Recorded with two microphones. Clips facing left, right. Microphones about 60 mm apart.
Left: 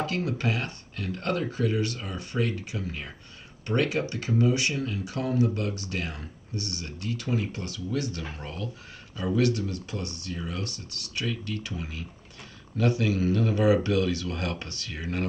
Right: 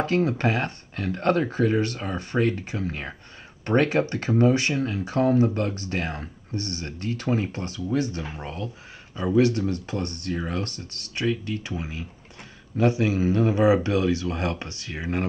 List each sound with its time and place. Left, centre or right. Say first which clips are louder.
0.0 s speech: right 6 dB; right
11.1 s speech: right 6 dB; right